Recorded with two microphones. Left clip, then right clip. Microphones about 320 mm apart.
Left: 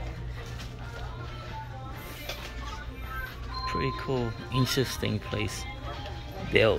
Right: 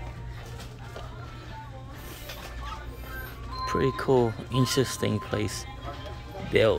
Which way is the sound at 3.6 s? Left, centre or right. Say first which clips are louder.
Right 5 dB; centre.